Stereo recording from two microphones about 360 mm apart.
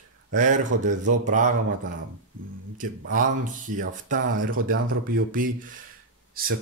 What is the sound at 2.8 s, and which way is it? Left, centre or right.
Speech, right.